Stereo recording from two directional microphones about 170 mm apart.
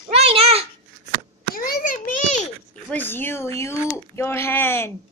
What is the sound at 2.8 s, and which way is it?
Speech, 10° left (ahead or behind).